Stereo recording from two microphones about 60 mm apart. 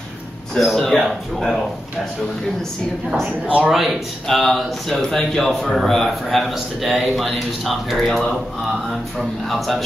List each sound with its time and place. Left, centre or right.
0.6 s speech: centre
3.3 s speech: right
3.7 s speech: centre
9.5 s speech: centre